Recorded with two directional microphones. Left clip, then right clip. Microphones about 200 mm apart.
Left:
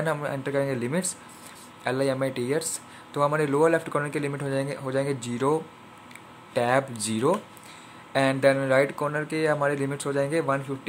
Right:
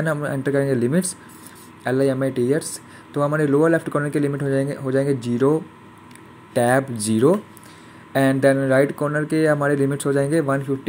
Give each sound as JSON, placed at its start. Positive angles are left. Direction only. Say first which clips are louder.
{"t": 0.0, "sound": "speech", "louder": "right 5 dB", "side_deg": -5}